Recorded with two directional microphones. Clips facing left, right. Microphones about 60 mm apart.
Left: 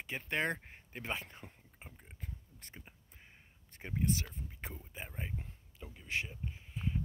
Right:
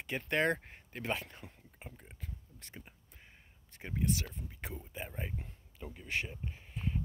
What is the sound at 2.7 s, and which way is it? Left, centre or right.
Speech, centre.